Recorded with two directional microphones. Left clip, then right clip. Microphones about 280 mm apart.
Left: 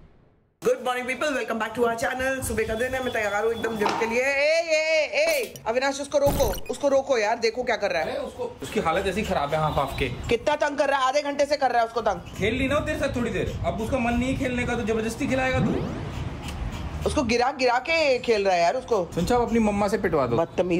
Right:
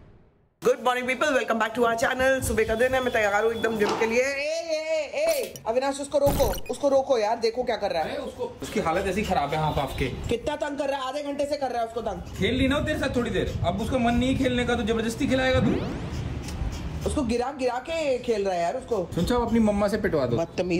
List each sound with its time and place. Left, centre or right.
0.7 s a man's voice: centre
4.8 s speech: left
5.2 s a man's voice: centre
6.7 s speech: left
7.2 s a man's voice: centre
10.4 s speech: centre
11.0 s a man's voice: centre
11.2 s a woman's voice: centre
12.4 s a man's voice: centre
17.3 s speech: centre
19.1 s a man's voice: centre
20.3 s a woman's voice: centre